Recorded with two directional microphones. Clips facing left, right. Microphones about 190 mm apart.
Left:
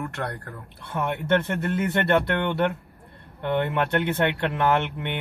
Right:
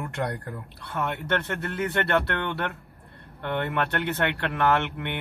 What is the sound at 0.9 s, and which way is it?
Speech, 15° left (ahead or behind).